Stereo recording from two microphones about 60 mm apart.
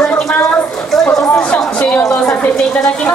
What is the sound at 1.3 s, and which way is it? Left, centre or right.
A woman's voice, centre.